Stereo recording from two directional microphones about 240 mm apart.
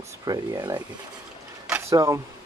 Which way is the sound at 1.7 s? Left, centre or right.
Centre.